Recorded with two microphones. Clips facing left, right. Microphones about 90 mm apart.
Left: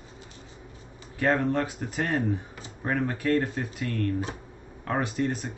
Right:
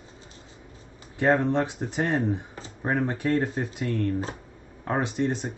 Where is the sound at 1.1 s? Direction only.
25° right (ahead or behind).